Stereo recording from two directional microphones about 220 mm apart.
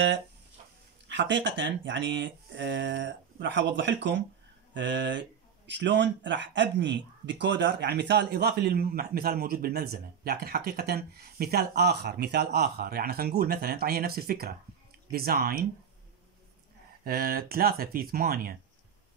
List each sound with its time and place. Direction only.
1.0 s a man's voice: 55° right (ahead or behind)
17.0 s a man's voice: 45° right (ahead or behind)